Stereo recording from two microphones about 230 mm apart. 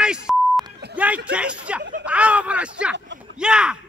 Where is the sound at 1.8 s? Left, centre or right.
Right.